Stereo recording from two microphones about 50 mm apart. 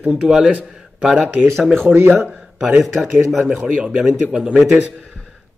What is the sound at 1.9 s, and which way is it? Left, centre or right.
Speech, right.